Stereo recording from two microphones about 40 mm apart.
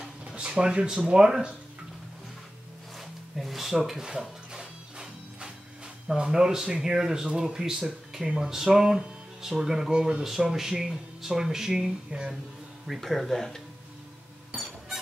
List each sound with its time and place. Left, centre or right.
0.3 s speech: right
3.3 s music: centre
6.2 s speech: centre
10.2 s speech: centre
12.8 s speech: centre